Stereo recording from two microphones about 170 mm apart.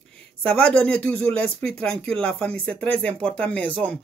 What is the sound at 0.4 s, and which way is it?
Speech, 5° left (ahead or behind).